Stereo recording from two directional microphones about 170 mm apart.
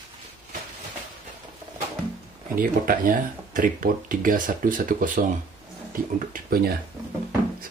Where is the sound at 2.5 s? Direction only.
55° right (ahead or behind).